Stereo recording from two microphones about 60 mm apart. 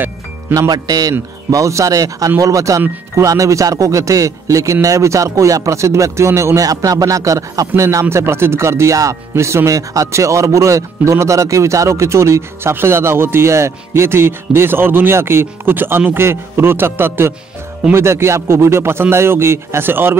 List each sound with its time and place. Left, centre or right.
0.6 s speech: right
1.5 s speech: right
2.4 s a man's voice: right
6.6 s a man's voice: right
9.3 s a man's voice: right